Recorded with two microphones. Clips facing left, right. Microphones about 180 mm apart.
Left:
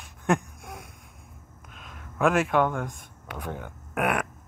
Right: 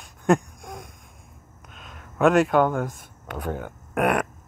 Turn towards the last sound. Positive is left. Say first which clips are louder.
# right 4 dB
turn(degrees=-40)  # may be behind; listen again after turning